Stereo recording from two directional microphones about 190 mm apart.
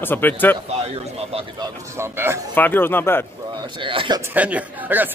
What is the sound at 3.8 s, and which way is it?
Speech, 25° right (ahead or behind).